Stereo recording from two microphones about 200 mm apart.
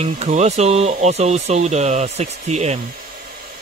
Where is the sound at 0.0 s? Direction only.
35° right (ahead or behind).